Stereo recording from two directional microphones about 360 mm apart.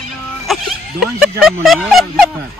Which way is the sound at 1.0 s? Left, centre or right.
Centre.